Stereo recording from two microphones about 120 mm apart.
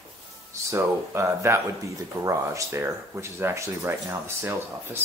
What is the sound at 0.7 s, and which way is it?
Speech, 20° right (ahead or behind).